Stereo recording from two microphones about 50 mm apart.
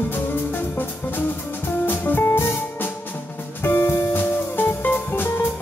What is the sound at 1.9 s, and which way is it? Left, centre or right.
Music, left.